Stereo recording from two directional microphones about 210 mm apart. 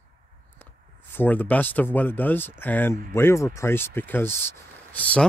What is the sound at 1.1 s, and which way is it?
Speech, 10° left (ahead or behind).